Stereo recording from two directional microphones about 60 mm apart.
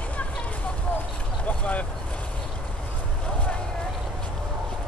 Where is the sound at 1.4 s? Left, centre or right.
Left.